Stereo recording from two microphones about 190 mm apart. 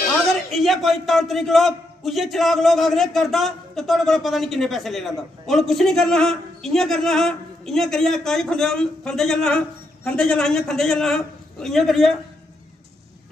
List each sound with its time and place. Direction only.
0.5 s a man's voice: centre (ahead or behind)